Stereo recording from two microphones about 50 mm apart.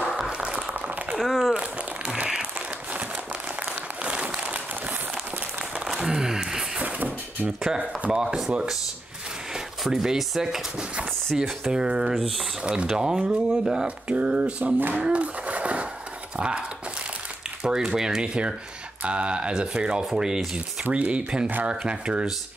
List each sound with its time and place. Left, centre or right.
0.3 s a sound: right
1.1 s a sound: centre
1.5 s crumpling: right
4.0 s applause: right
5.9 s a sound: centre
8.1 s speech: centre
9.8 s speech: centre
12.1 s speech: centre
12.6 s speech: centre
13.8 s speech: right
15.0 s a sound: right
17.6 s speech: centre